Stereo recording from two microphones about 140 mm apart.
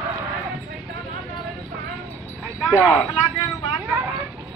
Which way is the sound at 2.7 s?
10° right (ahead or behind).